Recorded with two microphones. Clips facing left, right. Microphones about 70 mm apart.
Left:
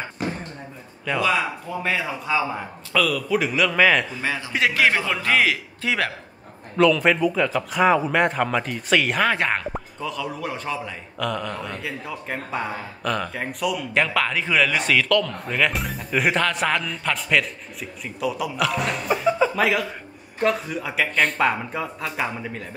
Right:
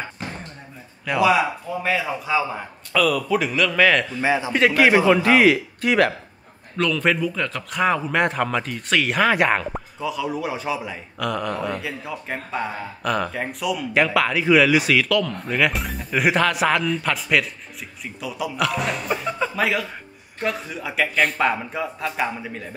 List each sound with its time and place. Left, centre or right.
1.0 s a man's voice: centre
4.2 s a man's voice: centre
4.5 s a man's voice: centre
4.8 s a man's voice: centre